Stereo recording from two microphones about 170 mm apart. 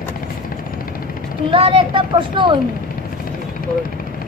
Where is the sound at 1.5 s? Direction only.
30° right (ahead or behind).